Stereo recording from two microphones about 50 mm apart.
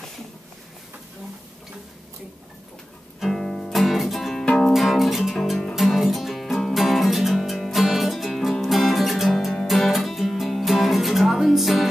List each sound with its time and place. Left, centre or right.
3.2 s music: centre
3.8 s music: centre
4.5 s music: centre
4.7 s music: centre